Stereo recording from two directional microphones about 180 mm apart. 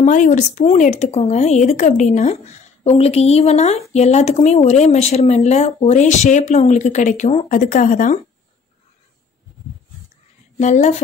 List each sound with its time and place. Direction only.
0.0 s speech: 45° left (ahead or behind)
10.6 s speech: 40° left (ahead or behind)